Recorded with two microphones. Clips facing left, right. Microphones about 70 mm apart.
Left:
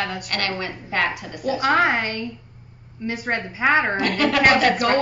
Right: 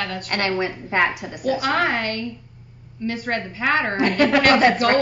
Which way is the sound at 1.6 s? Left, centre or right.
Centre.